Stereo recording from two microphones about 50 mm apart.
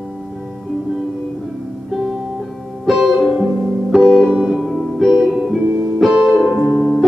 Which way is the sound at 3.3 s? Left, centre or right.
Centre.